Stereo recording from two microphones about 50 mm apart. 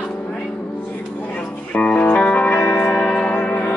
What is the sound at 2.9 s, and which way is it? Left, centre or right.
Music, centre.